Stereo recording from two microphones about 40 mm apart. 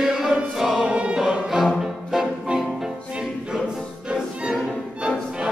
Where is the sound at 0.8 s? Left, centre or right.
Right.